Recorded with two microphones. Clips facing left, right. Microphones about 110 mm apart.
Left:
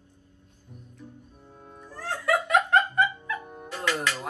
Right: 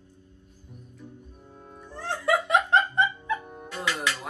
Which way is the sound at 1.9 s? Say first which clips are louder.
Right 1 dB; 25° right (ahead or behind).